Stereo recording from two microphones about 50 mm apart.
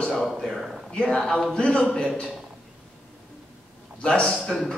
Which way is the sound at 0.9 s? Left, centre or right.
Centre.